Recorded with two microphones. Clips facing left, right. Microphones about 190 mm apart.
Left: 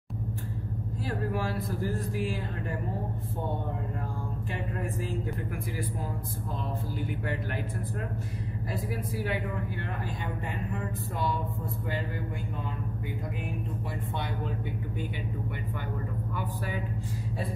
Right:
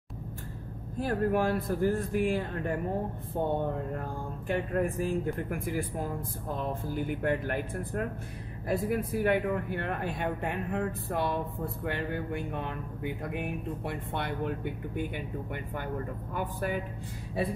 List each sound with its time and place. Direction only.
0.9 s speech: 55° right (ahead or behind)
4.5 s a man's voice: 50° right (ahead or behind)